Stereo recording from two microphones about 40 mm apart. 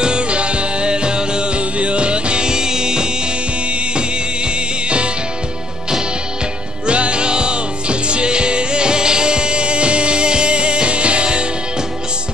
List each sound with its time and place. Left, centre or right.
0.0 s music: right
4.8 s music: right
6.9 s music: right